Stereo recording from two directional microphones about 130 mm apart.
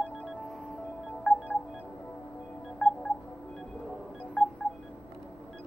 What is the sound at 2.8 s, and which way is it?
Telephone dialing, 5° left (ahead or behind).